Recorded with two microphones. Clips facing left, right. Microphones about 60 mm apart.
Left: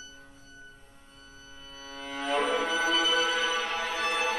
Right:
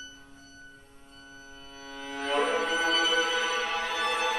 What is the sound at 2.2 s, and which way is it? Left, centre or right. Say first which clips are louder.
Music: right 1 dB; right.